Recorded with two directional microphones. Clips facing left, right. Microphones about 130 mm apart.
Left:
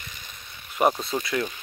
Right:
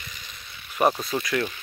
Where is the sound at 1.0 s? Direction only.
25° left (ahead or behind).